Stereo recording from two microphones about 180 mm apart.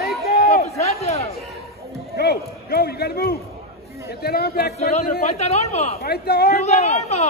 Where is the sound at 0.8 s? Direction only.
35° left (ahead or behind).